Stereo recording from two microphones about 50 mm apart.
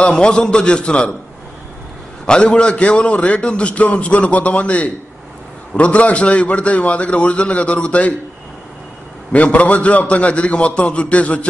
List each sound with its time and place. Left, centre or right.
0.0 s a man's voice: centre
2.2 s a man's voice: centre
9.3 s a man's voice: left